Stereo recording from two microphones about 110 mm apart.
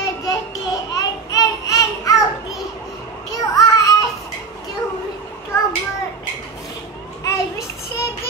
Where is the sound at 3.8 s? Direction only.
30° left (ahead or behind).